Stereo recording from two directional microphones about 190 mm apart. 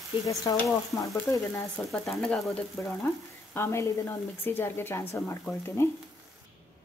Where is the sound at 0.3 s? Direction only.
20° left (ahead or behind).